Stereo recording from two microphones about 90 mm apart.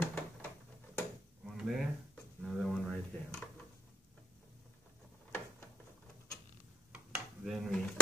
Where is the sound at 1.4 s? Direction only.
5° right (ahead or behind).